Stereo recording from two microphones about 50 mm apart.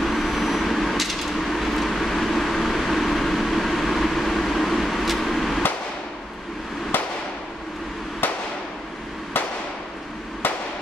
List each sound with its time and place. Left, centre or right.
0.0 s vehicle: centre
6.9 s fireworks: left
8.2 s fireworks: left
10.4 s a sound: left